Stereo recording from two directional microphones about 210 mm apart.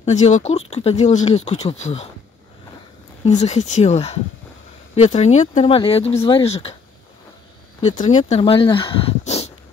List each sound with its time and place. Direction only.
0.0 s speech: 35° left (ahead or behind)
3.3 s speech: 35° left (ahead or behind)
8.0 s speech: 35° left (ahead or behind)